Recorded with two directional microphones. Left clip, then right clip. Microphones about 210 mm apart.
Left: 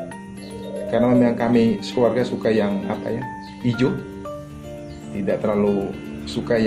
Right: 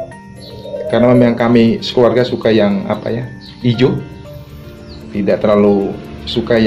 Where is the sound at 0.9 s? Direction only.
15° right (ahead or behind).